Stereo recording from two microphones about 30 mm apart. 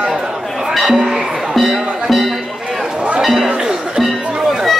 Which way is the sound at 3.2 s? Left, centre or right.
Centre.